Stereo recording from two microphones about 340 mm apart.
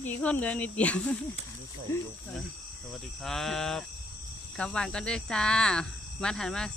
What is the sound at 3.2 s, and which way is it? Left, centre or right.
Speech, centre.